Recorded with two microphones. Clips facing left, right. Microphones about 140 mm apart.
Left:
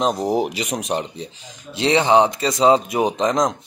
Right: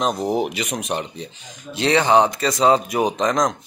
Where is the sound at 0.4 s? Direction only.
30° left (ahead or behind).